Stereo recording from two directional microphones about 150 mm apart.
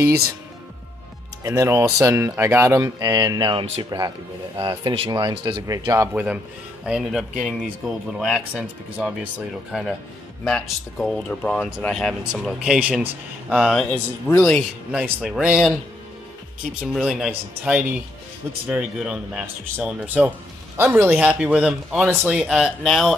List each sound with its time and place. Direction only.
1.4 s speech: 20° right (ahead or behind)
6.1 s speech: 10° right (ahead or behind)
14.9 s speech: 5° right (ahead or behind)
16.8 s speech: centre (ahead or behind)